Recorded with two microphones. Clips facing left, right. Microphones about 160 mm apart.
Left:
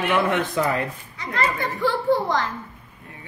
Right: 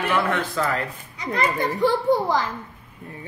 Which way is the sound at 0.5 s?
20° left (ahead or behind).